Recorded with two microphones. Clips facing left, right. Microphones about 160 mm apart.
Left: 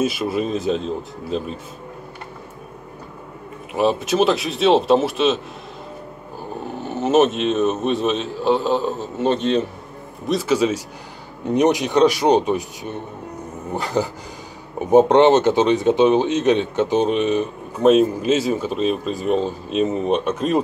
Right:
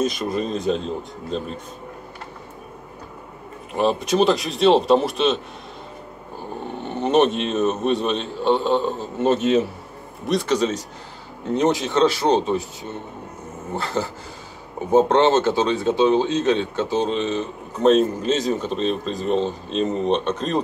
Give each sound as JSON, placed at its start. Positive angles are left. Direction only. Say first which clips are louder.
{"t": 0.0, "sound": "speech", "louder": "left 2 dB", "side_deg": 5}
{"t": 3.7, "sound": "speech", "louder": "left 1 dB", "side_deg": 0}
{"t": 6.6, "sound": "speech", "louder": "left 1 dB", "side_deg": 5}